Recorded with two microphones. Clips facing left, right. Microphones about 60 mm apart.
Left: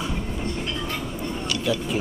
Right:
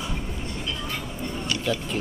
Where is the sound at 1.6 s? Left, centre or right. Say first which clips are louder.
Left 4 dB; centre.